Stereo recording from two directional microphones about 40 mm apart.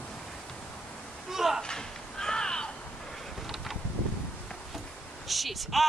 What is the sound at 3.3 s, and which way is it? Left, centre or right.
Wind, centre.